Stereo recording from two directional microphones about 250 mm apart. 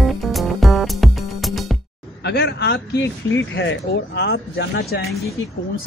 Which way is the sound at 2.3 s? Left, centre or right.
Left.